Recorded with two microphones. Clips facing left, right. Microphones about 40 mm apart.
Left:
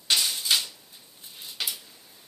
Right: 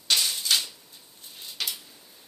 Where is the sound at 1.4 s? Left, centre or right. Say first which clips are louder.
Even; centre.